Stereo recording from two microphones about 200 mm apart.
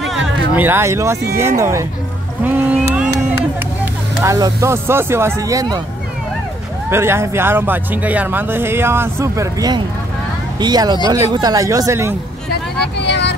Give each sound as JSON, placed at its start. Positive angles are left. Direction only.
{"t": 0.0, "sound": "music", "side_deg": 0}
{"t": 1.6, "sound": "speech", "side_deg": -15}
{"t": 2.4, "sound": "boat", "side_deg": -10}
{"t": 3.8, "sound": "speech", "side_deg": -15}
{"t": 6.9, "sound": "speech", "side_deg": -10}
{"t": 12.8, "sound": "vehicle", "side_deg": 60}